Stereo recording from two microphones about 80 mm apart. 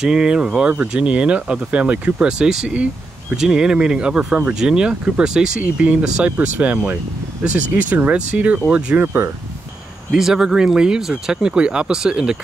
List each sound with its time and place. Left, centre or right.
0.0 s speech: centre; by 9.3 s right
10.1 s speech: centre